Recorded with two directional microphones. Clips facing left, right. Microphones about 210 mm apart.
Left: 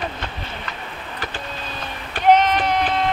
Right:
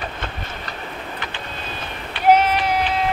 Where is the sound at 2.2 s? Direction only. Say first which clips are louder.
Even; 10° right (ahead or behind).